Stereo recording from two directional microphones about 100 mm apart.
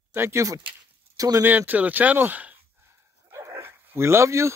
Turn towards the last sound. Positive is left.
turn(degrees=-30)  # may be behind; listen again after turning